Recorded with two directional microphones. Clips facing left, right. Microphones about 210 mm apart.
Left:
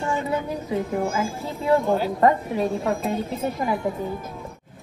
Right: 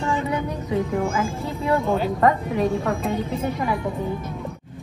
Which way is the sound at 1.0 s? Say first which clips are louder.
Right 1 dB; centre (ahead or behind).